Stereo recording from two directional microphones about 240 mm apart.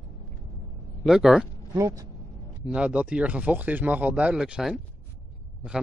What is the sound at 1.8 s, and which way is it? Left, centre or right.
Speech, centre.